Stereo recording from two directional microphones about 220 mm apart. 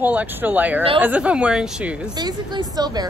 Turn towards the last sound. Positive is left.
turn(degrees=-20)  # may be behind; listen again after turning